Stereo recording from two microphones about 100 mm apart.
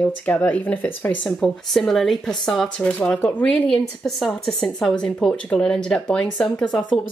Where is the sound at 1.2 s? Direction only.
5° left (ahead or behind).